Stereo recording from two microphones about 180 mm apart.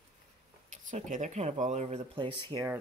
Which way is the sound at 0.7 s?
45° right (ahead or behind).